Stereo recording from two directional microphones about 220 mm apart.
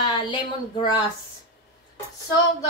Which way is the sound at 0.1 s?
20° left (ahead or behind).